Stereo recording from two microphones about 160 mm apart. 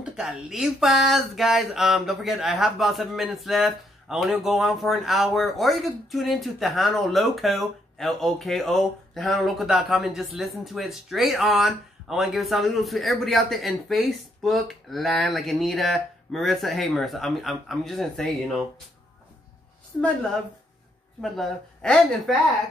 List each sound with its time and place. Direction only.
0.0 s speech: 5° right (ahead or behind)
19.9 s speech: 5° left (ahead or behind)
21.2 s speech: 5° left (ahead or behind)